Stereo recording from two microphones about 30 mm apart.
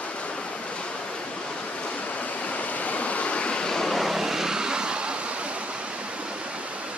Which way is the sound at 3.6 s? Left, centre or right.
Left.